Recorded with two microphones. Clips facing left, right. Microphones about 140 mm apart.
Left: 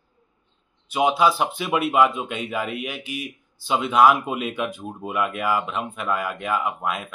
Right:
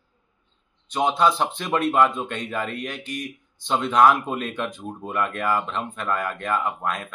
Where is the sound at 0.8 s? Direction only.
5° left (ahead or behind).